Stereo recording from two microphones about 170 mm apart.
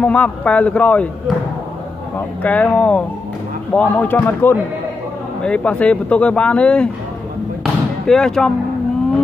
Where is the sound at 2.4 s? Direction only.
10° left (ahead or behind).